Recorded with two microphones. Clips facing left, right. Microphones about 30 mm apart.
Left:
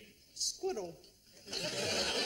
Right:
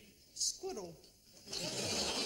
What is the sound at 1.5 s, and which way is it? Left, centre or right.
Speech, left.